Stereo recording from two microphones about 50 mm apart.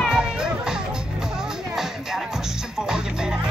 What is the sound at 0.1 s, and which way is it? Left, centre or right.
Music, centre.